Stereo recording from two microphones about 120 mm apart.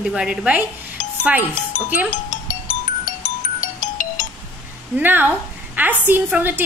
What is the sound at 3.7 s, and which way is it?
Music, 90° left.